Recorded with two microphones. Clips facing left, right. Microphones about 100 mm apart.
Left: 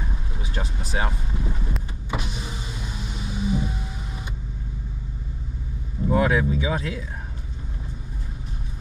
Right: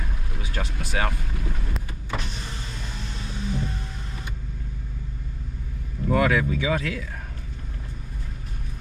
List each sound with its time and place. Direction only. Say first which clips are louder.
0.9 s speech: even; 15° left (ahead or behind)
1.7 s power windows: left 2 dB; 10° left (ahead or behind)
6.0 s speech: left 1 dB; 15° left (ahead or behind)